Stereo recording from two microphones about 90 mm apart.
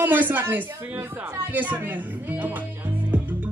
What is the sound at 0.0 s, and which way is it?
Speech, 20° right (ahead or behind).